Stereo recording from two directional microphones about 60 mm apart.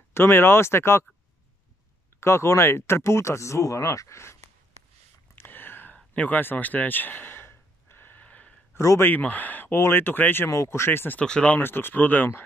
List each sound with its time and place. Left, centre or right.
0.1 s speech: left
2.1 s speech: left
5.3 s a sound: left
5.9 s a sound: left
8.7 s speech: left
9.0 s speech: left
9.8 s speech: left
10.5 s speech: left
11.1 s speech: centre
11.6 s speech: left